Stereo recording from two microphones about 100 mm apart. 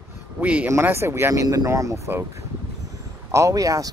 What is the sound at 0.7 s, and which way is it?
Speech, 25° right (ahead or behind).